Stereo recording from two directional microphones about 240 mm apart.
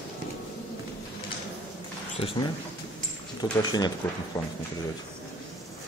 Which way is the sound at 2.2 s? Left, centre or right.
Left.